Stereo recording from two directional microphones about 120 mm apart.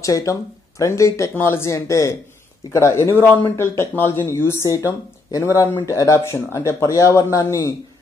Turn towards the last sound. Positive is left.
turn(degrees=25)  # may be behind; listen again after turning